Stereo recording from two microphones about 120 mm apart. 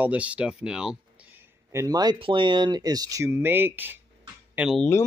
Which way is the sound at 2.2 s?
40° right (ahead or behind).